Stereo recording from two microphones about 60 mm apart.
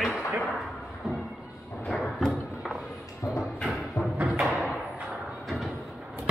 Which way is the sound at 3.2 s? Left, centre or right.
Left.